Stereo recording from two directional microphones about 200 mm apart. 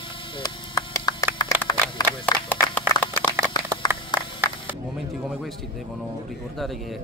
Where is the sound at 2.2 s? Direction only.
5° left (ahead or behind).